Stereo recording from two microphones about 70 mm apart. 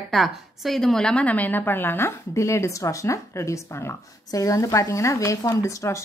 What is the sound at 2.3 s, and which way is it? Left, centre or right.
Speech, left.